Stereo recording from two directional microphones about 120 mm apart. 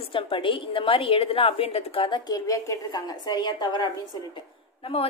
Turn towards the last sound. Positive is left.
turn(degrees=50)  # may be behind; listen again after turning